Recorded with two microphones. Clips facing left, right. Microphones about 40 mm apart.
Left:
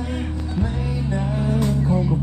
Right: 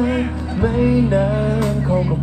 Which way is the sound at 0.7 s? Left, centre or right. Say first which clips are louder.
Right 11 dB; right.